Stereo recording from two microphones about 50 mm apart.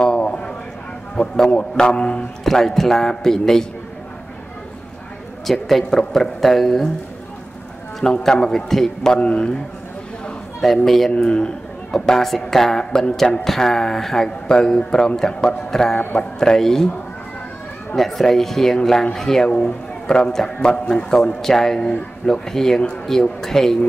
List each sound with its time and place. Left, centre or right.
0.0 s a sound: centre
1.2 s speech: left
2.4 s a man's voice: centre
5.5 s speech: centre
8.2 s a man's voice: centre
9.2 s speech: left
10.6 s speech: centre
11.1 s a man's voice: centre
17.9 s a man's voice: centre
21.4 s a man's voice: centre